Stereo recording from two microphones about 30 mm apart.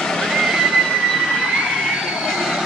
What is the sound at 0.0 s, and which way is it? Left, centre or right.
Slosh, centre.